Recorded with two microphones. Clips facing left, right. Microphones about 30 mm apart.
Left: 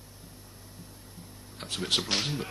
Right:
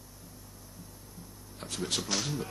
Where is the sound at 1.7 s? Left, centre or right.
Left.